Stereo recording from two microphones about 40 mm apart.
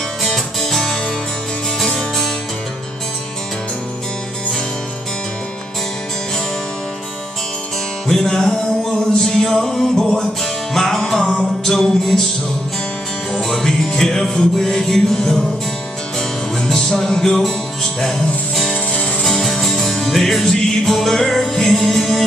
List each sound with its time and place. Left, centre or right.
0.2 s music: centre
1.8 s music: centre
8.1 s music: centre
13.3 s music: centre